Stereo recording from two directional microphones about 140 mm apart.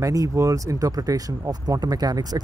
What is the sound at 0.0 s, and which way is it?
Speech, 25° right (ahead or behind).